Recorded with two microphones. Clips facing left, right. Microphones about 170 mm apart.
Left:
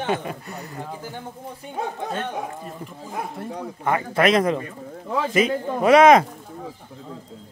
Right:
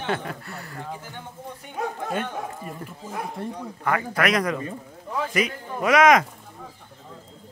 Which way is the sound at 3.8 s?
25° left (ahead or behind).